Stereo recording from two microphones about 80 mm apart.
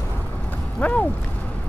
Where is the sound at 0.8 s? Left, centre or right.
Centre.